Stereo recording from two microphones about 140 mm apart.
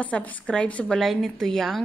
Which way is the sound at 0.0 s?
10° left (ahead or behind).